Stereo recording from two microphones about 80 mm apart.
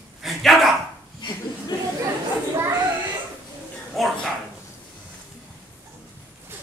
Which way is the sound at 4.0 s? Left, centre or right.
Centre.